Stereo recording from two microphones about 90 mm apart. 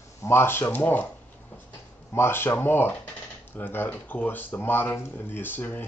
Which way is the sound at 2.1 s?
25° left (ahead or behind).